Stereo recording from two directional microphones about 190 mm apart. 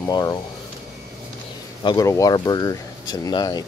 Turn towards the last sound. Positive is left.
turn(degrees=20)  # may be behind; listen again after turning